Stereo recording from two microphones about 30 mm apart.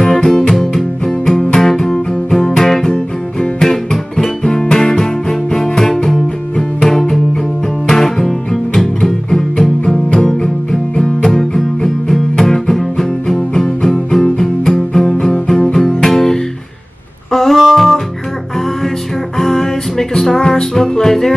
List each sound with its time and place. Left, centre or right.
0.0 s music: centre
3.6 s music: centre
17.6 s music: centre
19.3 s music: centre